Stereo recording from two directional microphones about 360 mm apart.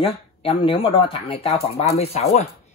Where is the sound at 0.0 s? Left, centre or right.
Centre.